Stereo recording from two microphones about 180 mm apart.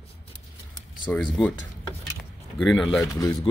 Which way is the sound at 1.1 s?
5° left (ahead or behind).